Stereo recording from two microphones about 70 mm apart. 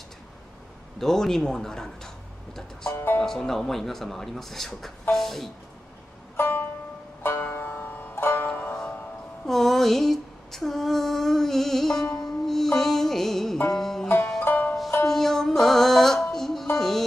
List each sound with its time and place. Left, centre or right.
0.9 s a man's voice: centre
2.9 s music: left
3.3 s speech: centre
6.3 s music: left
9.5 s a sound: centre
13.7 s music: centre
14.0 s banjo: left
14.4 s music: left
15.0 s music: centre